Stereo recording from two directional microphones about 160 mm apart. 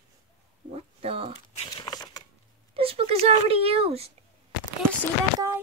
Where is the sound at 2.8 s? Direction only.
35° right (ahead or behind).